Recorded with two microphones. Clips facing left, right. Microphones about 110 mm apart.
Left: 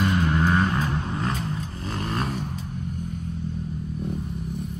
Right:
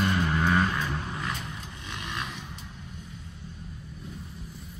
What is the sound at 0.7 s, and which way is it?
Vehicle, 35° left (ahead or behind).